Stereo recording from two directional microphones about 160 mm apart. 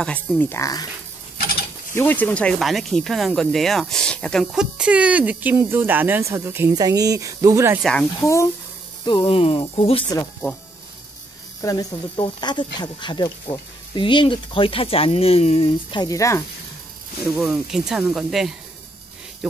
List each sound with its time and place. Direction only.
0.0 s speech: 5° left (ahead or behind)
2.0 s speech: 10° left (ahead or behind); by 7.8 s 20° right (ahead or behind)
7.8 s speech: 5° left (ahead or behind)
8.2 s speech: 20° left (ahead or behind)
9.0 s speech: 30° left (ahead or behind)
11.6 s speech: 20° left (ahead or behind)
17.4 s speech: 5° right (ahead or behind)